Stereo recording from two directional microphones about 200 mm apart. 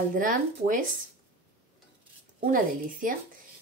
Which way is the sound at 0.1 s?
45° right (ahead or behind).